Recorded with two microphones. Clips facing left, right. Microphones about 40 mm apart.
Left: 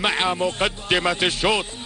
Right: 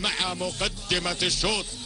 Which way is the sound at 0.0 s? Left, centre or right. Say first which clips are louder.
Left 7 dB; left.